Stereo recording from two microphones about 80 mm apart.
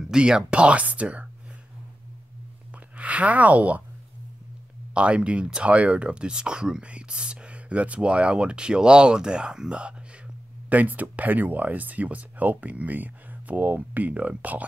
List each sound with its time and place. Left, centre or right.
0.0 s speech: centre
2.7 s speech: centre
4.9 s speech: centre